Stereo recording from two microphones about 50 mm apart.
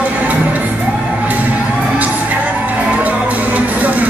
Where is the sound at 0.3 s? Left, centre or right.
Right.